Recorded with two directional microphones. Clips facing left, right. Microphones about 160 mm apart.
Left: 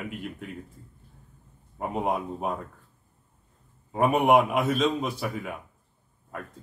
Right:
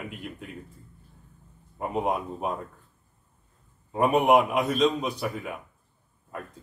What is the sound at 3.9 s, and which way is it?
A man's voice, centre (ahead or behind).